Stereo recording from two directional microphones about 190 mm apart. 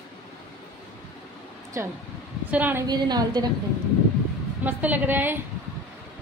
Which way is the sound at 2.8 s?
20° right (ahead or behind).